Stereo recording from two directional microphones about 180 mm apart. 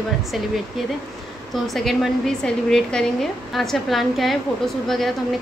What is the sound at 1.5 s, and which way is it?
A woman's voice, centre (ahead or behind).